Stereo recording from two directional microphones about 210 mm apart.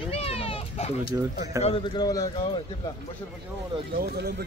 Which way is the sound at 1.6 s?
25° left (ahead or behind).